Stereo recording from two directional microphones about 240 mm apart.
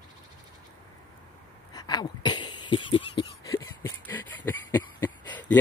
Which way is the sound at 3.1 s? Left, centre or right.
Centre.